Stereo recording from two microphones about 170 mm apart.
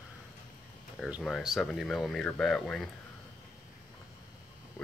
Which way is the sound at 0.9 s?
Centre (ahead or behind).